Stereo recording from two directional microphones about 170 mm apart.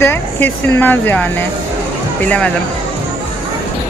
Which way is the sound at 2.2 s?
5° left (ahead or behind).